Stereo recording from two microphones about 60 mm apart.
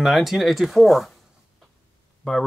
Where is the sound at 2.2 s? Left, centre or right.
Centre.